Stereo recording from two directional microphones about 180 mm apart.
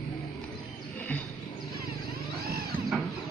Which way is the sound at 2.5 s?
60° right (ahead or behind).